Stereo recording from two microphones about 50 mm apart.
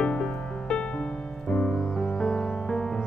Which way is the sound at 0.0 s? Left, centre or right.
Centre.